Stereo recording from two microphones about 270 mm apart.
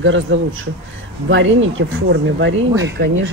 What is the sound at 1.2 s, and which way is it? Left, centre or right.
A man's voice, right.